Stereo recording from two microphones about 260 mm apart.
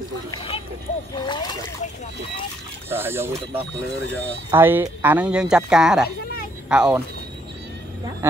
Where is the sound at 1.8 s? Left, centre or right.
Left.